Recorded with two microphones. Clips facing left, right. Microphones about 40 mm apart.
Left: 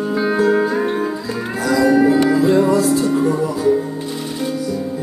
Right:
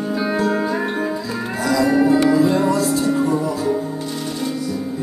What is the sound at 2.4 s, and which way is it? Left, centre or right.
Music, centre.